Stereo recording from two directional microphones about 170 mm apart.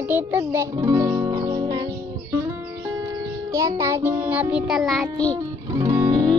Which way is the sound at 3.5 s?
20° right (ahead or behind).